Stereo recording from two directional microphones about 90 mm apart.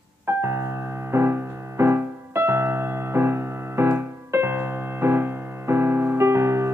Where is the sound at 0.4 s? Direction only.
30° right (ahead or behind).